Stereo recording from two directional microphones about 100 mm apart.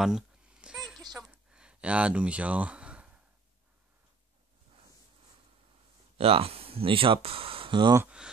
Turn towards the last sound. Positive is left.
turn(degrees=-55)  # may be behind; listen again after turning